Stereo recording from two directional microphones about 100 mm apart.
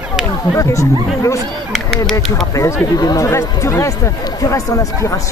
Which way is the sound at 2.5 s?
35° left (ahead or behind).